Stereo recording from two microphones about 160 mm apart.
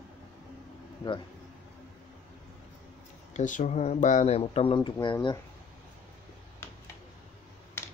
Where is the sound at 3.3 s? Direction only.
50° left (ahead or behind); by 5.3 s 30° left (ahead or behind).